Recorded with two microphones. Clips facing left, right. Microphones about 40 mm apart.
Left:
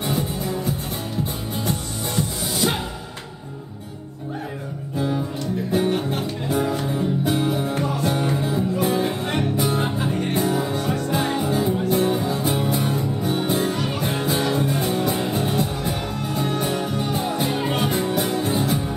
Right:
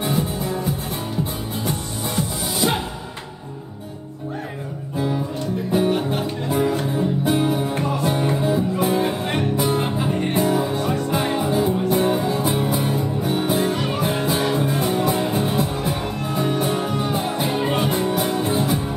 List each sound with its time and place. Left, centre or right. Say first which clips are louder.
0.0 s music: right 2 dB; centre
4.9 s music: right 1 dB; centre
13.7 s music: right 2 dB; centre
14.0 s music: right 1 dB; centre